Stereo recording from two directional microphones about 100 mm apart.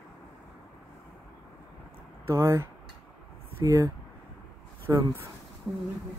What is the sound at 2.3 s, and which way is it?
Speech, 30° right (ahead or behind).